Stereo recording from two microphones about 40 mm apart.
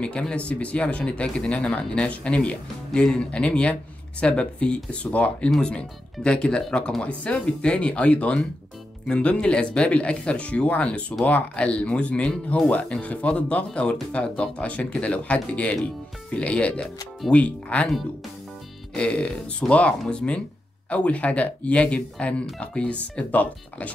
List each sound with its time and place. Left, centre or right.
0.0 s speech: left
2.9 s speech: centre
3.2 s speech: left
5.6 s speech: left
7.0 s speech: left
12.5 s speech: left
12.8 s speech: left
18.9 s speech: left